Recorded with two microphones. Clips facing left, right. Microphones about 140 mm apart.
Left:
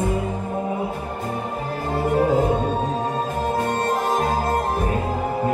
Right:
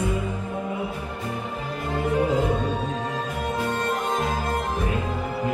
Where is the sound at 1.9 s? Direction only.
35° left (ahead or behind).